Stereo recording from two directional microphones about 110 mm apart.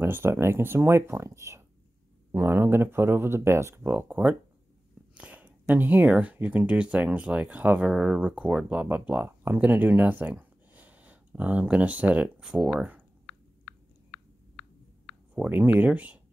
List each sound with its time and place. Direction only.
0.0 s speech: 20° right (ahead or behind)
15.3 s speech: 10° right (ahead or behind)